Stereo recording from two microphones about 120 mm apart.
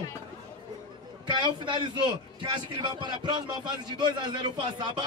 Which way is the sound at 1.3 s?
40° right (ahead or behind).